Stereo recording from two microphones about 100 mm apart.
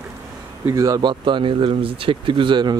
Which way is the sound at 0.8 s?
40° right (ahead or behind).